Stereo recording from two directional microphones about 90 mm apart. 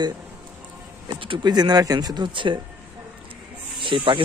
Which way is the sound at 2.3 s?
65° right (ahead or behind).